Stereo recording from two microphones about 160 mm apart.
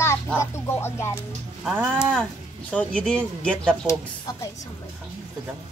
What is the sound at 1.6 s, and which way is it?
Speech, 10° right (ahead or behind).